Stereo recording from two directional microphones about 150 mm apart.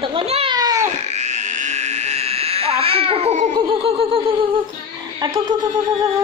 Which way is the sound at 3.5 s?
40° right (ahead or behind).